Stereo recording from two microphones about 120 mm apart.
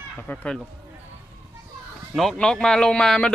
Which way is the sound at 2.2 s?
5° left (ahead or behind).